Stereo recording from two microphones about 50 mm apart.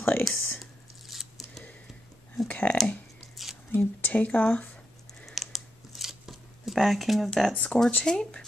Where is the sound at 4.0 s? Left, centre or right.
Left.